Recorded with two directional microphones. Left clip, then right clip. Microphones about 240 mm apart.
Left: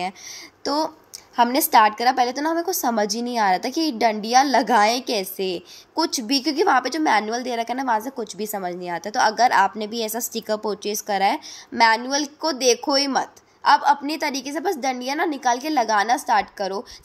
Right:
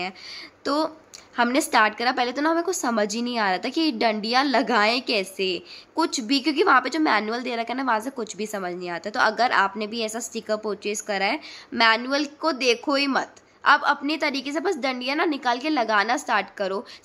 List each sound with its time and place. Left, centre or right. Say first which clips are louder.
0.7 s a woman's voice: left 1 dB; centre